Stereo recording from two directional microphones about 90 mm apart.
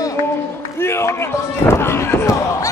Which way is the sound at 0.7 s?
30° left (ahead or behind).